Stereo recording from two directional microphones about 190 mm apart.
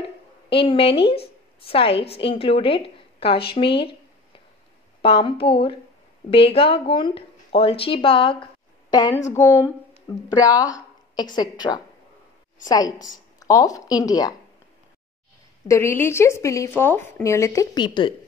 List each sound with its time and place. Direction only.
0.5 s speech: 30° left (ahead or behind)
5.0 s speech: 25° left (ahead or behind)
15.7 s a woman's voice: 15° left (ahead or behind)